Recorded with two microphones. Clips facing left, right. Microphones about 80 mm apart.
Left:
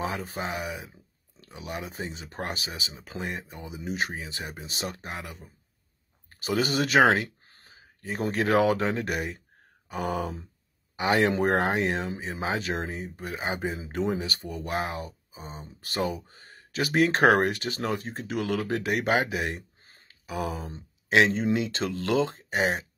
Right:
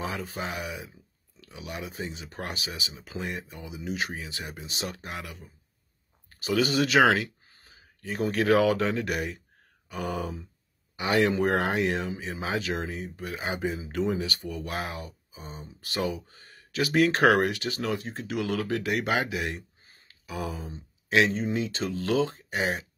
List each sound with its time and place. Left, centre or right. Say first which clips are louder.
0.0 s speech: left 2 dB; left
10.1 s a sound: left 2 dB; left
11.0 s speech: left 1 dB; left
18.6 s speech: even; left
19.8 s a sound: left 1 dB; left
21.8 s speech: left 1 dB; left
22.2 s speech: left 2 dB; left